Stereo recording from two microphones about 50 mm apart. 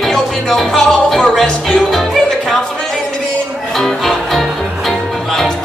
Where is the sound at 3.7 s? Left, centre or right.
Centre.